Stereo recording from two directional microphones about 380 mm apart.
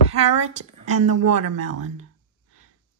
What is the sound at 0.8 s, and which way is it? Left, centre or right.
Speech, centre.